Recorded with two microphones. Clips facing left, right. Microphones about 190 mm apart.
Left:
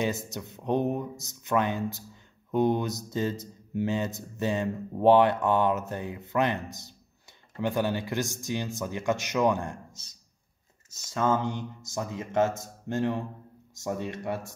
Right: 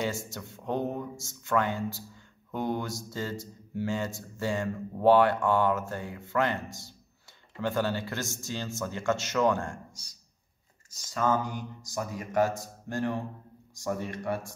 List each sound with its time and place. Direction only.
0.0 s speech: 20° left (ahead or behind)